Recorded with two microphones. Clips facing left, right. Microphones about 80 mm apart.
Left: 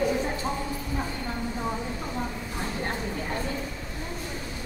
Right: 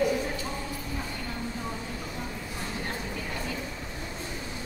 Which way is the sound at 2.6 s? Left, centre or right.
Left.